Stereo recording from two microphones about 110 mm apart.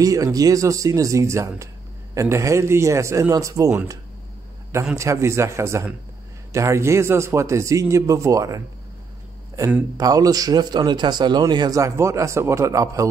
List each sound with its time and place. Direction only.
0.0 s a man's voice: 30° right (ahead or behind)
9.9 s a man's voice: 35° right (ahead or behind)